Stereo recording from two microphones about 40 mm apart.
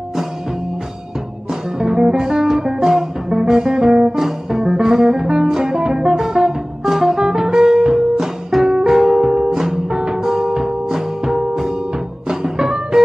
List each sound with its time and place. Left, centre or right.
1.5 s music: centre